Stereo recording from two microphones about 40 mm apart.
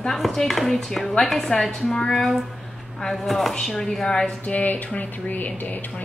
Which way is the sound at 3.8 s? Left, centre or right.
Centre.